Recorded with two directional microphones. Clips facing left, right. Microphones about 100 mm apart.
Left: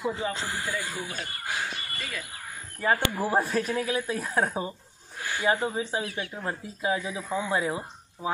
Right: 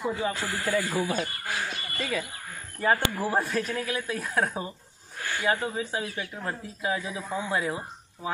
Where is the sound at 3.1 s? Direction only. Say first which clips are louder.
Left 1 dB; 10° left (ahead or behind).